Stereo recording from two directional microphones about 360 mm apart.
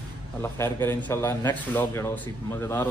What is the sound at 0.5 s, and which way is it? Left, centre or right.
A man's voice, centre.